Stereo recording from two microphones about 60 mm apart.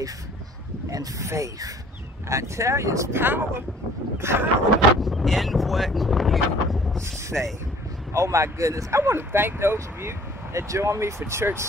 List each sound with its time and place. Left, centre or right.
0.8 s speech: right
3.2 s speech: right
5.0 s speech: centre
8.1 s speech: right
9.0 s speech: right